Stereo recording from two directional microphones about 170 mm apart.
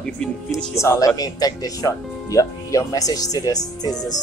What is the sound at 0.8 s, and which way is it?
Speech, 15° left (ahead or behind).